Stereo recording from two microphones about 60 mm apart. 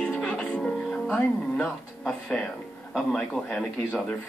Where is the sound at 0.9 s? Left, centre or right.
Centre.